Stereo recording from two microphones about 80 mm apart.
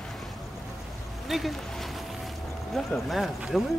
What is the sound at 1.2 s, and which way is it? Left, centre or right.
Speech, centre.